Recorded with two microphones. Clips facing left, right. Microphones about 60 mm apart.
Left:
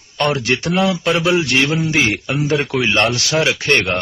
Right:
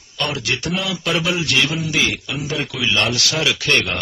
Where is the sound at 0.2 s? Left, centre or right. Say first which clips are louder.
Left 6 dB; left.